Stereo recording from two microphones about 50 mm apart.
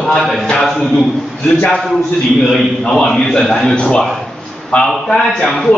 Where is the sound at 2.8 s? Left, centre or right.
Centre.